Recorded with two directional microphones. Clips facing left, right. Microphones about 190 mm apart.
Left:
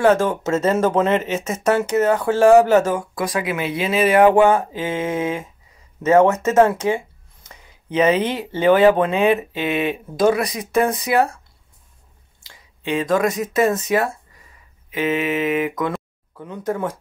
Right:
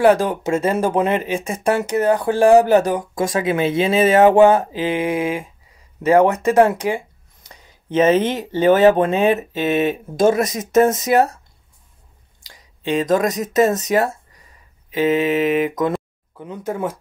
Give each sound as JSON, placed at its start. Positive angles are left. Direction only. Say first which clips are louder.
{"t": 0.3, "sound": "speech", "louder": "even", "side_deg": -10}
{"t": 7.4, "sound": "speech", "louder": "right 2 dB", "side_deg": -40}
{"t": 12.4, "sound": "a sound", "louder": "right 2 dB", "side_deg": -40}
{"t": 13.6, "sound": "speech", "louder": "right 2 dB", "side_deg": -40}
{"t": 15.5, "sound": "speech", "louder": "right 2 dB", "side_deg": -20}
{"t": 15.9, "sound": "speech", "louder": "right 4 dB", "side_deg": -5}